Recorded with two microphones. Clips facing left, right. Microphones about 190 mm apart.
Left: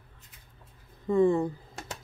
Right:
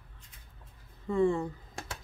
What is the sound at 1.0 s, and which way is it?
Speech, 35° left (ahead or behind).